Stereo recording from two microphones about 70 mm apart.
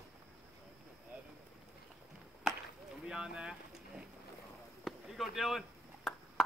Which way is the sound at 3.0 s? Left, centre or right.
Centre.